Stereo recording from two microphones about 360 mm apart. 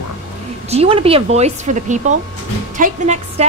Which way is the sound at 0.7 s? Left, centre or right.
Centre.